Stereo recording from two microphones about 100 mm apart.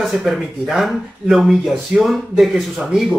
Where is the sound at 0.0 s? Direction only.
Centre (ahead or behind).